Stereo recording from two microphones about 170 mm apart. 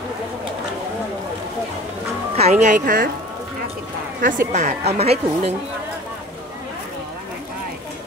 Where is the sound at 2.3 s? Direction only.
40° right (ahead or behind).